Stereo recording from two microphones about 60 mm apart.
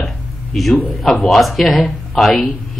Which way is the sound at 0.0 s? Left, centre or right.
Centre.